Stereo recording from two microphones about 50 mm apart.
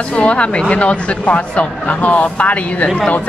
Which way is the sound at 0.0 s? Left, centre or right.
Centre.